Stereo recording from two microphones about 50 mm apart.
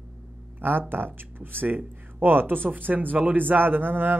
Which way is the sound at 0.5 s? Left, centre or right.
Right.